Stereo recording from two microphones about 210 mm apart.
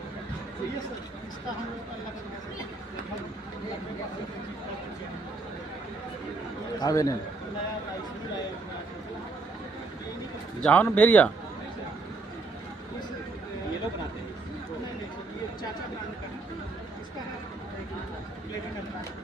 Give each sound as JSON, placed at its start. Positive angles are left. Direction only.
{"t": 6.8, "sound": "speech", "side_deg": 15}
{"t": 10.6, "sound": "speech", "side_deg": 5}